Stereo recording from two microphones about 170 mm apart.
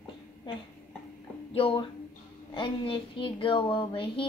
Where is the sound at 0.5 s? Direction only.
30° left (ahead or behind).